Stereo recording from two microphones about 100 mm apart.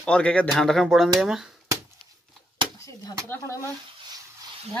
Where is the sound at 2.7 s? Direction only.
30° left (ahead or behind).